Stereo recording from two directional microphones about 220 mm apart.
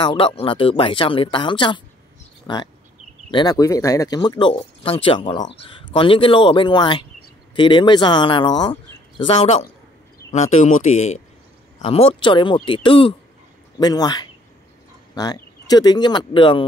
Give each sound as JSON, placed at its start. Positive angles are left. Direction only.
{"t": 0.0, "sound": "speech", "side_deg": 20}